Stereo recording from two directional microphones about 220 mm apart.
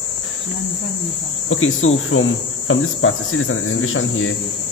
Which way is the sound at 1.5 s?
65° left (ahead or behind).